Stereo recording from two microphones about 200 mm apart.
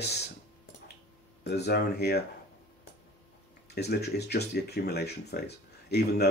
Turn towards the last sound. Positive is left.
turn(degrees=55)  # may be behind; listen again after turning